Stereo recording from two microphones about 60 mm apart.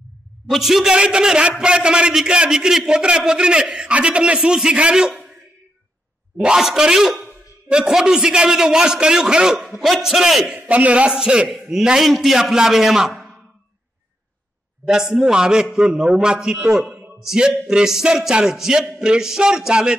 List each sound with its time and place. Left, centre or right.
0.5 s a man's voice: centre
6.3 s a man's voice: centre
10.5 s a man's voice: right; by 13.3 s centre
14.9 s a man's voice: centre